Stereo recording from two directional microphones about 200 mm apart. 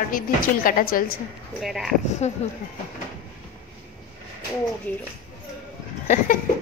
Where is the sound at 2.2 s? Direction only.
35° left (ahead or behind).